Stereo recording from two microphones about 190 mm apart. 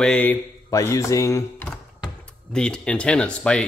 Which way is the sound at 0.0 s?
5° left (ahead or behind).